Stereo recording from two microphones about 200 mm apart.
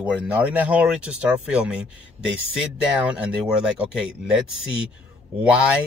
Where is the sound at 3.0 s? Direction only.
5° right (ahead or behind).